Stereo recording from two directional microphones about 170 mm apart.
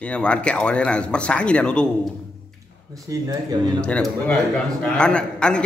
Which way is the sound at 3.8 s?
5° left (ahead or behind).